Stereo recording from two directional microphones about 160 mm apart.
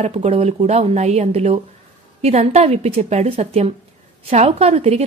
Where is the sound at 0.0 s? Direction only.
40° right (ahead or behind).